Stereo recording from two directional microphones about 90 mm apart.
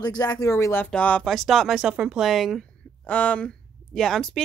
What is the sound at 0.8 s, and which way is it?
Speech, 15° left (ahead or behind).